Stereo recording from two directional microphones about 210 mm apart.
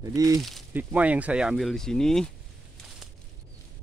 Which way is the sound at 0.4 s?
Centre (ahead or behind).